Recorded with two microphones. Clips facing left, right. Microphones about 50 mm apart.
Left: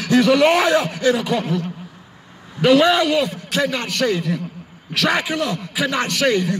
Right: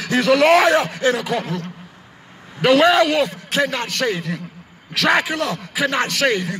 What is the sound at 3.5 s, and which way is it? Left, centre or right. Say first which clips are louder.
Speech: even; right.